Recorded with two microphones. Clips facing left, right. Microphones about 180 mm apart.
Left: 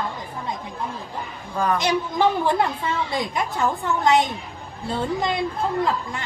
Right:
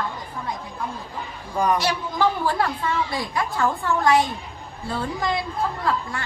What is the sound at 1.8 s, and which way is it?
A woman's voice, 20° left (ahead or behind).